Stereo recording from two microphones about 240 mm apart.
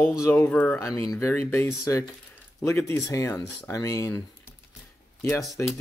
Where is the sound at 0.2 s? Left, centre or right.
Centre.